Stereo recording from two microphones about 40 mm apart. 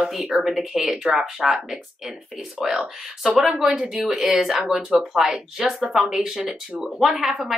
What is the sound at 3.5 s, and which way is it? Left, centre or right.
Speech, centre.